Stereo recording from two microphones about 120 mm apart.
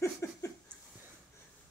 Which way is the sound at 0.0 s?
25° left (ahead or behind).